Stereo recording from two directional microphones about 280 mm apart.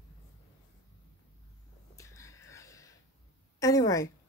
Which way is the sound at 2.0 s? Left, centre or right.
Centre.